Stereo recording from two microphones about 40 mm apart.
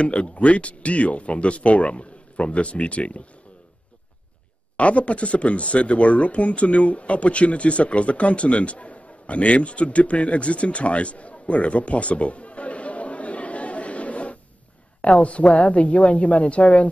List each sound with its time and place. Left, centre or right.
0.0 s speech: left
4.7 s speech: left